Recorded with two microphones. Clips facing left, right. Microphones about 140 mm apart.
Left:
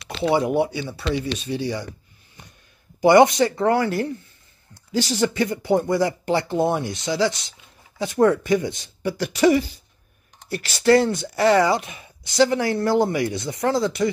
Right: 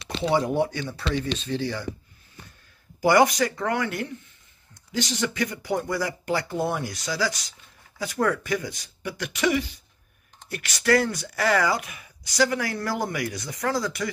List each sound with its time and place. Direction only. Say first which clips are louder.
0.3 s speech: left 3 dB; 10° left (ahead or behind)
3.0 s speech: left 5 dB; 25° left (ahead or behind)